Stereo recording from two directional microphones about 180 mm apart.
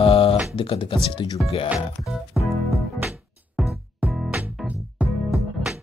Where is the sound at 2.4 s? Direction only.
5° right (ahead or behind).